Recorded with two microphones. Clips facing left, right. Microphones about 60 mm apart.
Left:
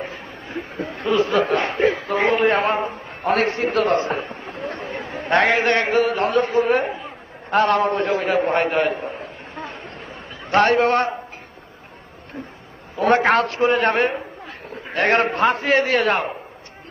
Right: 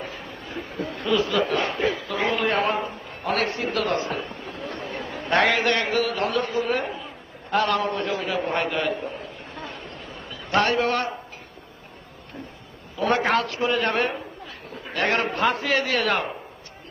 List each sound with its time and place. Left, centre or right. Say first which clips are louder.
0.0 s a sound: left 3 dB; left
1.8 s a man's voice: left 6 dB; left
12.9 s a man's voice: left 5 dB; left
15.0 s a man's voice: left 5 dB; left